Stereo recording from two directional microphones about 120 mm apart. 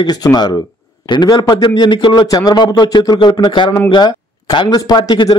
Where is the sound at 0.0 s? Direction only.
35° left (ahead or behind).